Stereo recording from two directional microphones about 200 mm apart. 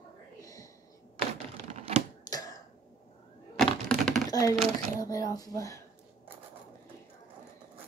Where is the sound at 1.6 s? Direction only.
35° right (ahead or behind).